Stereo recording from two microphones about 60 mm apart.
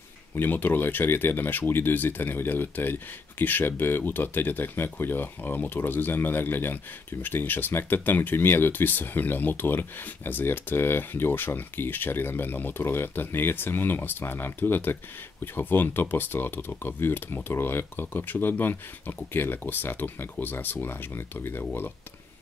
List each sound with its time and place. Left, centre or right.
0.4 s speech: left